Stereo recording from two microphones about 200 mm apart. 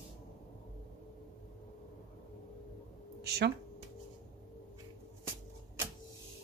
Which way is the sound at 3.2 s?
55° right (ahead or behind).